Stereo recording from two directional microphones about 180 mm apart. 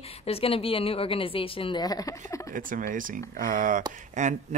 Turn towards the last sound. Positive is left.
turn(degrees=-40)  # may be behind; listen again after turning